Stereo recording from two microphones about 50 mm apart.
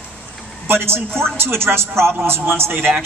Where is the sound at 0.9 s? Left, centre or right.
Right.